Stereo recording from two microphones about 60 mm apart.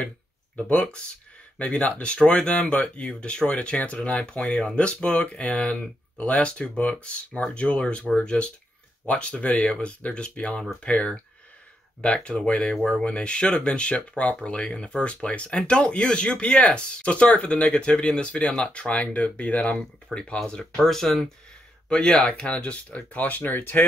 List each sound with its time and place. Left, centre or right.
0.7 s speech: centre
9.0 s speech: centre
20.1 s speech: centre
20.4 s speech: centre; by 23.8 s left